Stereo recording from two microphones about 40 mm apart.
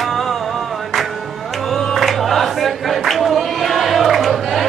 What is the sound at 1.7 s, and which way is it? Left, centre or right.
Choir, centre.